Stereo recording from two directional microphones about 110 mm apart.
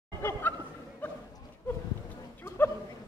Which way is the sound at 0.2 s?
20° left (ahead or behind).